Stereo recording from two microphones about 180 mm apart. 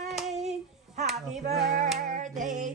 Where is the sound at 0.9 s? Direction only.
40° right (ahead or behind).